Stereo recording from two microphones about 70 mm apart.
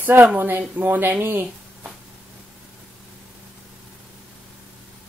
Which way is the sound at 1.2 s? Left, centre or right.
Right.